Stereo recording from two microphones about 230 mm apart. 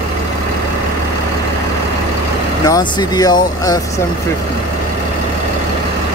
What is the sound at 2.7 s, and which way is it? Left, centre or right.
Speech, centre.